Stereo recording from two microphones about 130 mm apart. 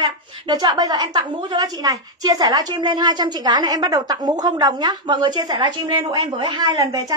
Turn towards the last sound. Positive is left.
turn(degrees=-30)  # may be behind; listen again after turning